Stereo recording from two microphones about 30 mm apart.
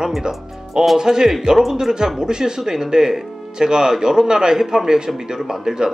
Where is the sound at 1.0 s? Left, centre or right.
Right.